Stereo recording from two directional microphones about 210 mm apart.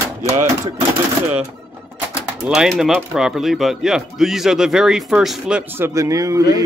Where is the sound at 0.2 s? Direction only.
30° right (ahead or behind).